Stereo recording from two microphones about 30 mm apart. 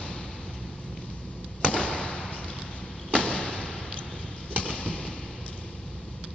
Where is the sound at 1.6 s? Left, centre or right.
Left.